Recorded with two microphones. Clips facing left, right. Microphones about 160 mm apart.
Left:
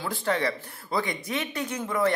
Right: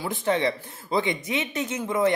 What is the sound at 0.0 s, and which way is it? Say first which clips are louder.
A man's voice: right 3 dB; 20° right (ahead or behind).